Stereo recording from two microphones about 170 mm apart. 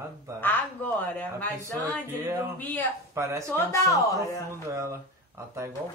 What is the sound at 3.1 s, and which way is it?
Speech, 15° right (ahead or behind).